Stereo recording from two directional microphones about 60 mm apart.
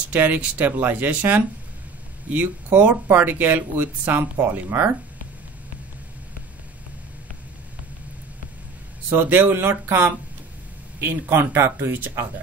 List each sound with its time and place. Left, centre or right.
0.1 s speech: right
9.1 s speech: right